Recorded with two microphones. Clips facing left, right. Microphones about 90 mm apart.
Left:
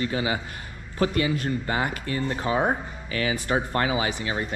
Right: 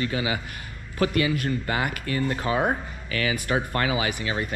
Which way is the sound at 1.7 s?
75° right (ahead or behind).